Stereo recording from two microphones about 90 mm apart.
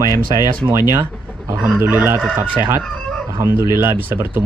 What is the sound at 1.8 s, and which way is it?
Speech, 25° right (ahead or behind).